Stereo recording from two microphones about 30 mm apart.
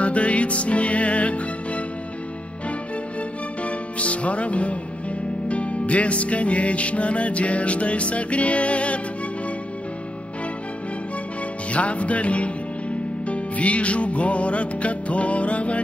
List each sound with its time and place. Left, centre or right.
0.0 s music: left
3.6 s music: left
11.7 s music: left